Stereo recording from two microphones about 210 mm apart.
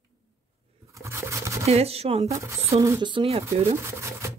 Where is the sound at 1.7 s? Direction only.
30° right (ahead or behind).